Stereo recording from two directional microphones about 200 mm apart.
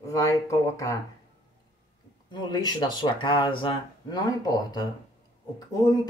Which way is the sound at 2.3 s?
20° left (ahead or behind).